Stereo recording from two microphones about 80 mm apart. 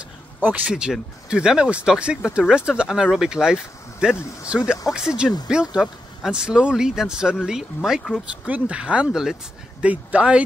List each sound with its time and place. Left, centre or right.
0.4 s speech: right
1.3 s speech: centre